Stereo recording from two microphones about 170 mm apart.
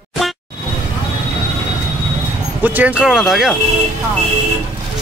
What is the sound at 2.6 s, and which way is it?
Speech, 10° right (ahead or behind).